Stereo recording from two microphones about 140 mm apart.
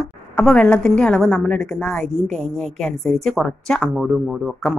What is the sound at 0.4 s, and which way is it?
A woman's voice, 10° left (ahead or behind).